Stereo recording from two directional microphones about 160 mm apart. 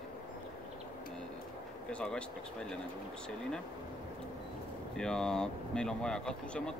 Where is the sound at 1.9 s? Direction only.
5° left (ahead or behind).